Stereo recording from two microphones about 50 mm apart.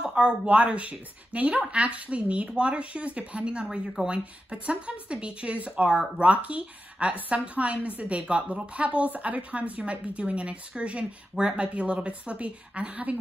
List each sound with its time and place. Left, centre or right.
0.0 s a woman's voice: centre